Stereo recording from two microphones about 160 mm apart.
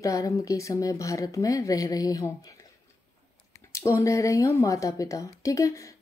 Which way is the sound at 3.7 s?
20° left (ahead or behind).